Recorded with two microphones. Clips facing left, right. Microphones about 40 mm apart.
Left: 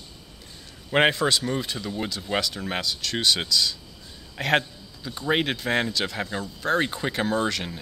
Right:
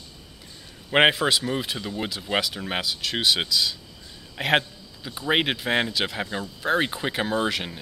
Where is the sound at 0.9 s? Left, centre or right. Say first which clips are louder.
Right 2 dB; centre.